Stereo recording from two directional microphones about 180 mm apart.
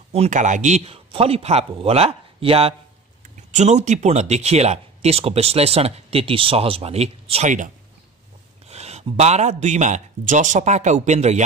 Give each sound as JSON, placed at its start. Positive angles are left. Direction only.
{"t": 0.1, "sound": "speech", "side_deg": -40}